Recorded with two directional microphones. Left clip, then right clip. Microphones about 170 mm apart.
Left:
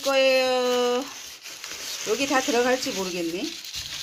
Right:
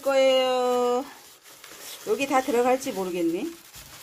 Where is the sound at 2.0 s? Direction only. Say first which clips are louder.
Even; 10° right (ahead or behind).